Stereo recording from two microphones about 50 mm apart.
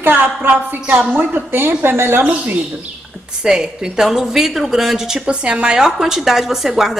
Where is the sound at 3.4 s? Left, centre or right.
Centre.